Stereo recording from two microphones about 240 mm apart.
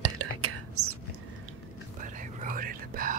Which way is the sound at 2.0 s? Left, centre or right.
Right.